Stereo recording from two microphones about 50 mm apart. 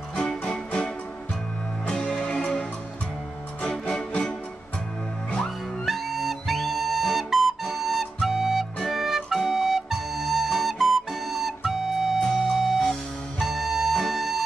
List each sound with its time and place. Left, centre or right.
0.4 s music: left
1.9 s music: centre
3.6 s music: centre
5.9 s flute: centre
12.2 s music: centre